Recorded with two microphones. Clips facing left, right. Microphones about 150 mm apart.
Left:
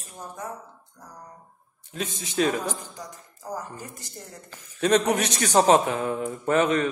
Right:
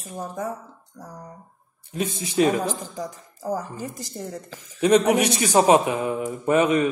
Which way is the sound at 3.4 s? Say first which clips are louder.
Right 7 dB; 90° right.